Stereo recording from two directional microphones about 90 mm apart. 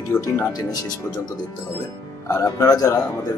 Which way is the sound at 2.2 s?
40° left (ahead or behind).